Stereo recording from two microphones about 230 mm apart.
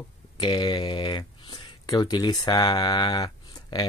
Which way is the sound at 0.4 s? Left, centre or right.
Centre.